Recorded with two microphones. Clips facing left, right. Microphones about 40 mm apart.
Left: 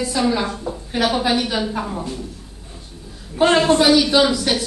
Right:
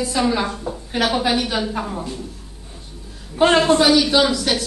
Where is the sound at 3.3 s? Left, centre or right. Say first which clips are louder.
Even; centre.